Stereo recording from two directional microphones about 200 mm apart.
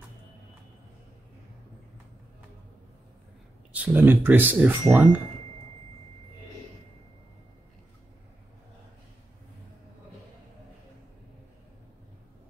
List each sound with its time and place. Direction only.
3.7 s speech: 10° right (ahead or behind)